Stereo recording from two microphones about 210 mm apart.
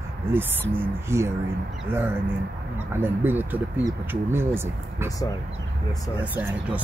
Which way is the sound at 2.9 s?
10° right (ahead or behind).